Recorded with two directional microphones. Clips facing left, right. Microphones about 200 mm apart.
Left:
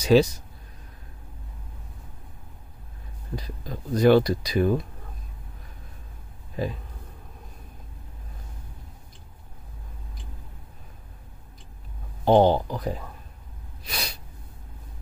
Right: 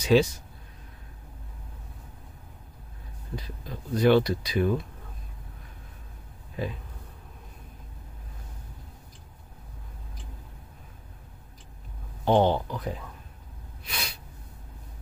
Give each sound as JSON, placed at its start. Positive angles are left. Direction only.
{"t": 0.0, "sound": "speech", "side_deg": 40}
{"t": 3.3, "sound": "speech", "side_deg": 40}
{"t": 6.6, "sound": "speech", "side_deg": 40}
{"t": 12.3, "sound": "speech", "side_deg": 35}
{"t": 13.8, "sound": "sneeze", "side_deg": 40}